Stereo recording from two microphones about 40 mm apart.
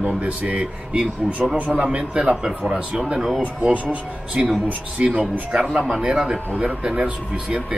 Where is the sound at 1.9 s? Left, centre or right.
Right.